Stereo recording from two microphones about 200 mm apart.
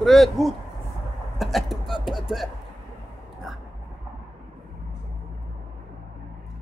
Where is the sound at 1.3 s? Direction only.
Centre (ahead or behind).